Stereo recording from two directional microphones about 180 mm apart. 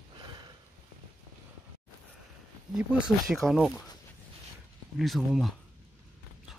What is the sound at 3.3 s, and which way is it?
Speech, centre (ahead or behind).